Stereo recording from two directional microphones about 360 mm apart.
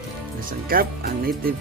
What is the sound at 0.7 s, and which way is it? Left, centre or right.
Speech, right.